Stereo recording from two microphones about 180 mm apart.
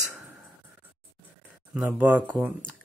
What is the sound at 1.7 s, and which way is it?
Speech, 10° right (ahead or behind).